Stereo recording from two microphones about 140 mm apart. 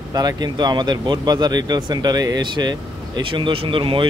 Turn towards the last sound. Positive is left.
turn(degrees=-40)  # may be behind; listen again after turning